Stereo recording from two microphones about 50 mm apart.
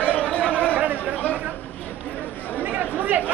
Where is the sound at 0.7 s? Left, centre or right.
Right.